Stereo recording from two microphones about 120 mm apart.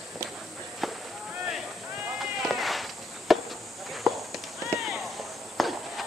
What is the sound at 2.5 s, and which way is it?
Insect, centre (ahead or behind).